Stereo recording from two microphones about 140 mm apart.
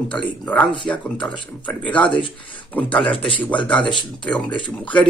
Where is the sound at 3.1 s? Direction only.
40° left (ahead or behind).